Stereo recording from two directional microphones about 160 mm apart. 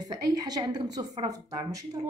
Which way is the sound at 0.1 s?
25° right (ahead or behind).